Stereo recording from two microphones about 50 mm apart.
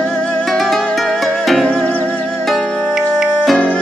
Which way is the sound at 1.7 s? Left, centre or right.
Left.